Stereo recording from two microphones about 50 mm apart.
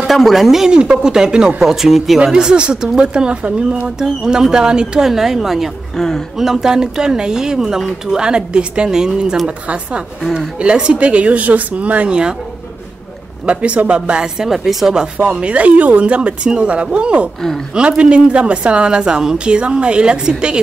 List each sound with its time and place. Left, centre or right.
0.0 s speech: centre
5.9 s speech: centre
6.3 s speech: centre
10.6 s a woman's voice: right
13.5 s a woman's voice: right; by 15.0 s centre
15.1 s a woman's voice: right